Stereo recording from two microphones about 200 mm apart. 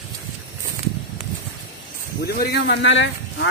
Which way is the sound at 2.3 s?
50° left (ahead or behind).